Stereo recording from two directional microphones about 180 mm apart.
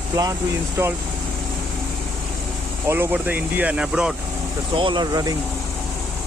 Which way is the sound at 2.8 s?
10° right (ahead or behind).